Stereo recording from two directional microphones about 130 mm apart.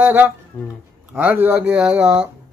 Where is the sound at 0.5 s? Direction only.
15° left (ahead or behind).